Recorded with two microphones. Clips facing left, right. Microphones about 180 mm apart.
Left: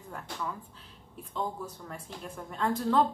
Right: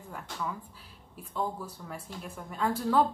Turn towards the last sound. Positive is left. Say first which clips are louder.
# even
turn(degrees=-5)  # may be behind; listen again after turning